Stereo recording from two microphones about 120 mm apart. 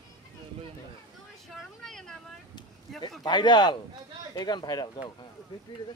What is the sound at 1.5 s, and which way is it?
Vehicle, centre (ahead or behind).